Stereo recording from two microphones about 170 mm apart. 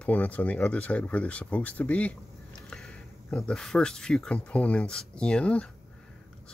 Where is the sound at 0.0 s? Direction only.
10° left (ahead or behind).